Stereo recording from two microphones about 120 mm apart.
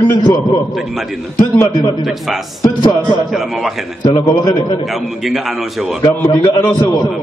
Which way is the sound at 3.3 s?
Centre (ahead or behind).